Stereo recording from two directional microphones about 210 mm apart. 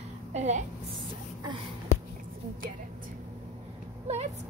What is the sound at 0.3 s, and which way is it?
Speech, 35° right (ahead or behind).